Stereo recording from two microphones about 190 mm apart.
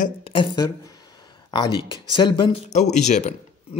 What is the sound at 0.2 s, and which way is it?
A man's voice, 25° left (ahead or behind).